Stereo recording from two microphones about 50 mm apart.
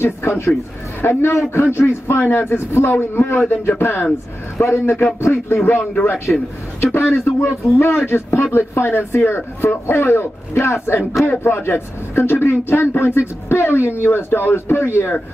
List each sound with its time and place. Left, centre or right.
0.0 s a man's voice: left
4.6 s a man's voice: left
6.3 s speech: centre
6.8 s speech: left
7.3 s a man's voice: left
11.2 s speech: left